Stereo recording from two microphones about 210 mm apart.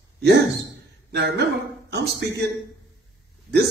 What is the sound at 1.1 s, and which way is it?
A man's voice, 50° right (ahead or behind).